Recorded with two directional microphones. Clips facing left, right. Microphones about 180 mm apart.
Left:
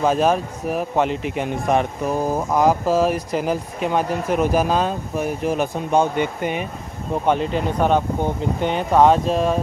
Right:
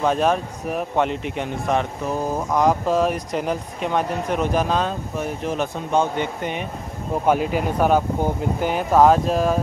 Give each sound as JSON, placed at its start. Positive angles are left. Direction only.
{"t": 0.0, "sound": "speech", "side_deg": 5}
{"t": 7.2, "sound": "speech", "side_deg": -5}